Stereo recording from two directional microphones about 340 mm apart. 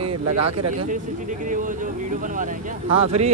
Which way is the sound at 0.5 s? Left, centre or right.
Right.